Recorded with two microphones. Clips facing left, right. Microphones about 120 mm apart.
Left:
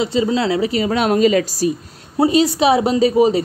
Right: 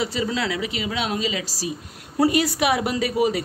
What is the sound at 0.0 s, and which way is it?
A woman's voice, 25° left (ahead or behind).